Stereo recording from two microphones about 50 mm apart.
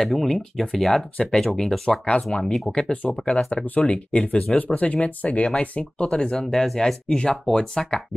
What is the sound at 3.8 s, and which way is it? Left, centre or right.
Speech, left.